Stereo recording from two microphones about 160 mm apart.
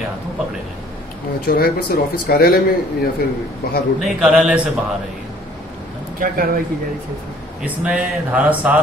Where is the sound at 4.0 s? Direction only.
5° right (ahead or behind).